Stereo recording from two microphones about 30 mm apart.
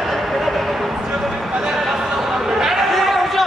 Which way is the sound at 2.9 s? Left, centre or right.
Centre.